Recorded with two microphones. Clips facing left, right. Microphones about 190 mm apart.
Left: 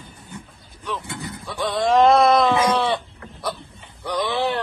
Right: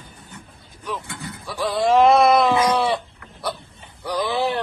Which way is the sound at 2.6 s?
25° left (ahead or behind).